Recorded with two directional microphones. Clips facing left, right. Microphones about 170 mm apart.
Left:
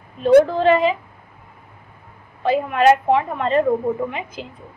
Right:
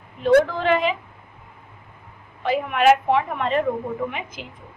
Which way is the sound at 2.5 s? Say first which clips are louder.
Left 2 dB; 35° left (ahead or behind).